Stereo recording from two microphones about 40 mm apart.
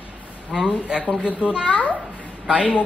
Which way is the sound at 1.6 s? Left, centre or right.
Left.